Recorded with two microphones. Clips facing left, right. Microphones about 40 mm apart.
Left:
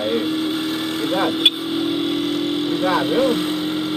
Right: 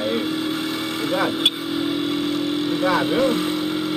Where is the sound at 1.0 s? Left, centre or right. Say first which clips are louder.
Left 2 dB; left.